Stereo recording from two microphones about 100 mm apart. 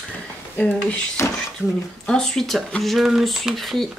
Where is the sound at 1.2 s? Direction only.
30° left (ahead or behind).